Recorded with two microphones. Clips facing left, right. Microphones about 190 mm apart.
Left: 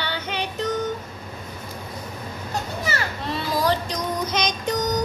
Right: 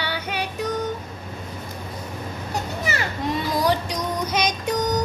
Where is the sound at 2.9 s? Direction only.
15° right (ahead or behind).